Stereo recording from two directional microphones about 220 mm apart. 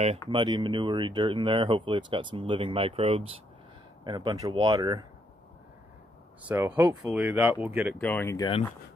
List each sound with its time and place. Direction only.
0.3 s speech: 20° right (ahead or behind)
6.4 s speech: 10° right (ahead or behind)
8.0 s speech: 10° left (ahead or behind)